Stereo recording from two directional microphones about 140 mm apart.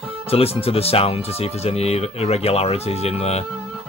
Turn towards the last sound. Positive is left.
turn(degrees=45)  # may be behind; listen again after turning